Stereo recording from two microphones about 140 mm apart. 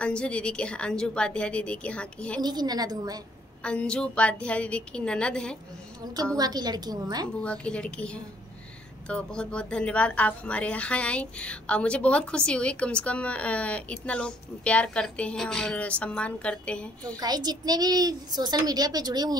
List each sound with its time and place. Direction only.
0.0 s speech: 10° left (ahead or behind)
2.4 s a child's voice: 30° right (ahead or behind)
3.6 s speech: 5° left (ahead or behind)
6.3 s a child's voice: 30° right (ahead or behind)
7.4 s speech: 10° left (ahead or behind)
17.2 s a child's voice: 30° right (ahead or behind)